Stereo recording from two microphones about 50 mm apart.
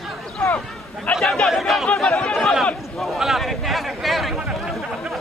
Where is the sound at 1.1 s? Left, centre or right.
Left.